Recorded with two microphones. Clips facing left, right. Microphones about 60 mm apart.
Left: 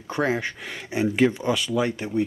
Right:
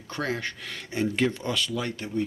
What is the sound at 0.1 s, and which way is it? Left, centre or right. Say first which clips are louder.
Speech: left 6 dB; centre.